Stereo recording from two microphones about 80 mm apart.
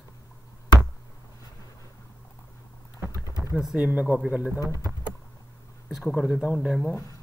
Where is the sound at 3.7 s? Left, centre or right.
Centre.